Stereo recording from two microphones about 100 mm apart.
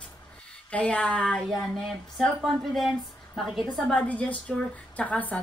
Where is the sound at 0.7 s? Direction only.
10° left (ahead or behind).